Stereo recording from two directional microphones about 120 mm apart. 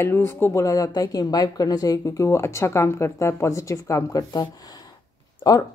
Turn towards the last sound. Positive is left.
turn(degrees=30)  # may be behind; listen again after turning